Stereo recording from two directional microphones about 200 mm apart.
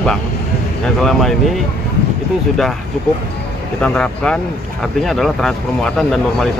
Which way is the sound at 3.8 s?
5° left (ahead or behind).